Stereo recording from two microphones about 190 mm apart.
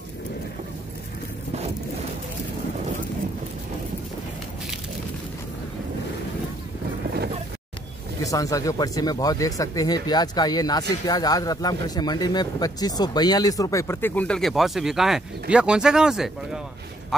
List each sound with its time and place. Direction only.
8.2 s speech: 15° left (ahead or behind); by 16.3 s 5° right (ahead or behind)